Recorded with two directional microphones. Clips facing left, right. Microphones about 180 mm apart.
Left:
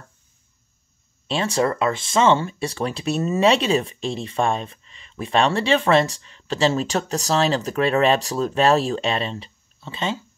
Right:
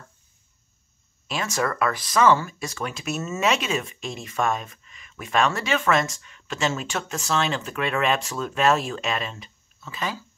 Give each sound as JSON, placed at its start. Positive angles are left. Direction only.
{"t": 1.2, "sound": "speech", "side_deg": 30}